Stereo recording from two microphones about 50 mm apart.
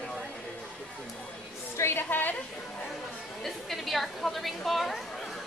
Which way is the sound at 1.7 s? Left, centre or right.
Left.